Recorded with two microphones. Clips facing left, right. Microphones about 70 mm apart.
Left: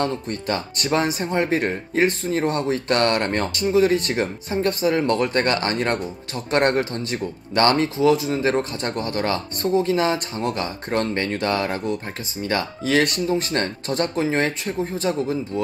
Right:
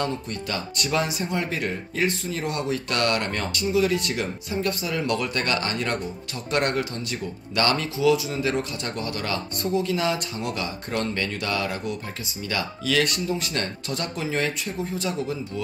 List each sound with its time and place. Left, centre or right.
0.0 s speech: left